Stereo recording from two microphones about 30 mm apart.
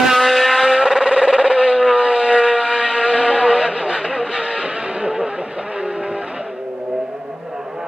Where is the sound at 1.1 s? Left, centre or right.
Right.